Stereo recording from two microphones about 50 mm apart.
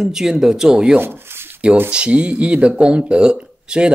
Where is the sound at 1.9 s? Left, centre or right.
Right.